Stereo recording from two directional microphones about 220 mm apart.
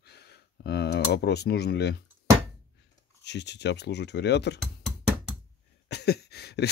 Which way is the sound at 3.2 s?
50° left (ahead or behind).